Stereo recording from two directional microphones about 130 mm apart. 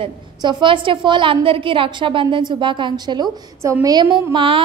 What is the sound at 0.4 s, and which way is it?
A woman's voice, 35° right (ahead or behind).